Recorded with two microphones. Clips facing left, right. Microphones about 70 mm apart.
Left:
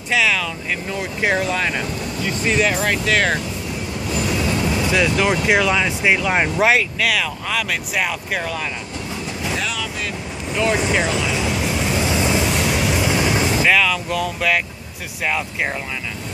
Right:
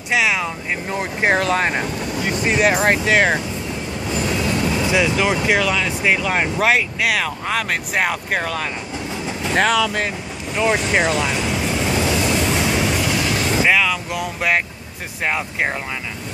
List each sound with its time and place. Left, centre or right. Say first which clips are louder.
0.1 s speech: even; right
2.6 s speech: right 5 dB; right
3.1 s speech: right 1 dB; right
4.1 s train: even; centre
4.8 s speech: left 1 dB; centre
7.2 s speech: right 1 dB; right
9.5 s speech: right 10 dB; right
10.5 s speech: right 1 dB; centre
11.3 s vehicle: even; centre
12.1 s vehicle: even; centre
12.4 s vehicle: right 1 dB; centre
13.0 s vehicle: left 2 dB; centre
13.6 s vehicle: right 2 dB; centre
15.2 s speech: right 1 dB; right